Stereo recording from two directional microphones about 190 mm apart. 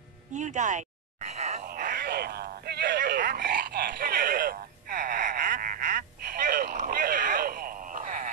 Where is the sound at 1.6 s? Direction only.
50° right (ahead or behind).